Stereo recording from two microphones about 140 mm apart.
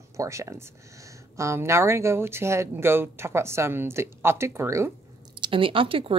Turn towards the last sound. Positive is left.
turn(degrees=-40)  # may be behind; listen again after turning